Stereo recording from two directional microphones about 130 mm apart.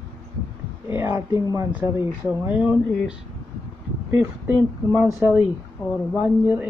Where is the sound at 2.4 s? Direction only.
10° right (ahead or behind).